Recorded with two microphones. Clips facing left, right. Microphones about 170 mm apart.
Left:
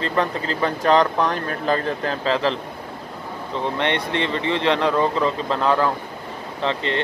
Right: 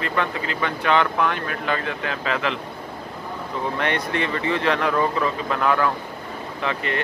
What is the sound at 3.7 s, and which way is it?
Speech, 25° left (ahead or behind).